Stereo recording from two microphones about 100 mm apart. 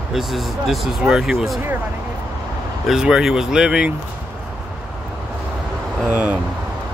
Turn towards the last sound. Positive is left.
turn(degrees=-15)  # may be behind; listen again after turning